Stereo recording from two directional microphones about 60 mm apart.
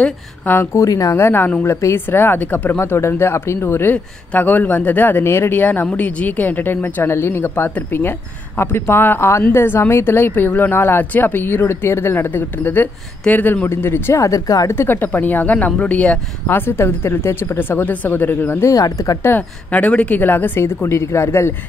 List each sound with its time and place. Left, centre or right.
0.7 s speech: left
1.1 s a woman's voice: left
1.4 s speech: left
1.7 s a woman's voice: left
2.0 s speech: left
2.8 s speech: left
5.2 s speech: left
13.7 s speech: left
14.2 s speech: left
14.7 s speech: left
16.4 s speech: left
18.7 s speech: left
19.2 s speech: left